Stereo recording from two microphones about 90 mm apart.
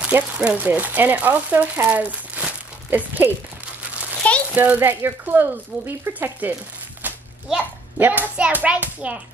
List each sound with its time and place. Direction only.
0.0 s speech: 15° right (ahead or behind)
4.2 s a child's voice: 15° left (ahead or behind)
4.6 s speech: 20° right (ahead or behind)
8.0 s a child's voice: 20° right (ahead or behind)